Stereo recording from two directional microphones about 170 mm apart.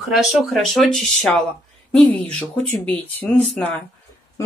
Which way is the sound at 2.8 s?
10° left (ahead or behind).